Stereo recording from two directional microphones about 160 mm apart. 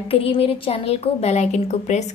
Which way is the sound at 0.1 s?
35° left (ahead or behind).